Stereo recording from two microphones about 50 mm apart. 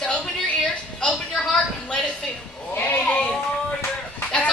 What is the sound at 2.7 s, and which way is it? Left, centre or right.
Goat, left.